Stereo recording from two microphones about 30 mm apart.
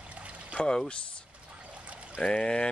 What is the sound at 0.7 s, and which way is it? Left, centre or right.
Speech, left.